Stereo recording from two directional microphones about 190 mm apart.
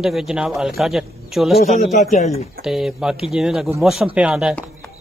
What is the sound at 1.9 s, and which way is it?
Speech, 40° left (ahead or behind).